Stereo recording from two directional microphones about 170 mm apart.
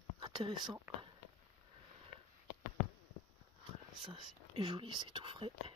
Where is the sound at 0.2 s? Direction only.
25° right (ahead or behind).